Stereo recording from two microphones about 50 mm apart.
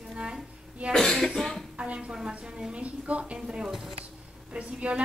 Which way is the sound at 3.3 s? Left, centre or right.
Centre.